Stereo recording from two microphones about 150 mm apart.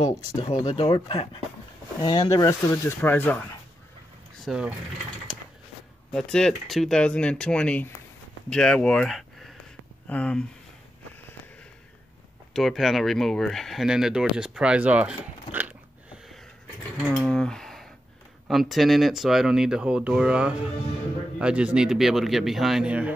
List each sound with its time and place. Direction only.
0.5 s speech: 45° left (ahead or behind); by 3.4 s 10° left (ahead or behind)
4.5 s speech: 5° right (ahead or behind)
6.1 s speech: 5° left (ahead or behind)
12.5 s speech: centre (ahead or behind)